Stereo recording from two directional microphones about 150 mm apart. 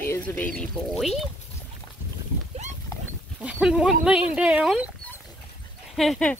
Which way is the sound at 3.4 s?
5° right (ahead or behind).